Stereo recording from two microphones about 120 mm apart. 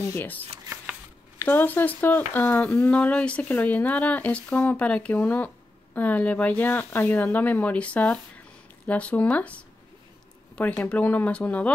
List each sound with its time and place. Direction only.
0.0 s speech: 20° left (ahead or behind)
1.4 s speech: 15° left (ahead or behind)